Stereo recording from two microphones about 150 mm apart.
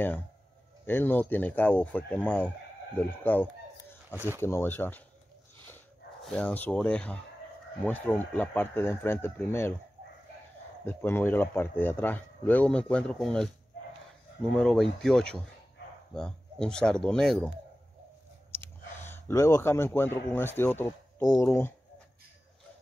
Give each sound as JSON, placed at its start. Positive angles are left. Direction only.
{"t": 0.8, "sound": "speech", "side_deg": 15}
{"t": 4.1, "sound": "speech", "side_deg": -10}
{"t": 4.4, "sound": "speech", "side_deg": 15}
{"t": 6.2, "sound": "speech", "side_deg": 10}
{"t": 10.9, "sound": "speech", "side_deg": 15}
{"t": 14.5, "sound": "speech", "side_deg": 5}
{"t": 18.5, "sound": "speech", "side_deg": 15}